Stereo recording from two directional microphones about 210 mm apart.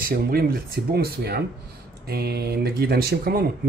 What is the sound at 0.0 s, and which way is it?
Speech, 45° right (ahead or behind).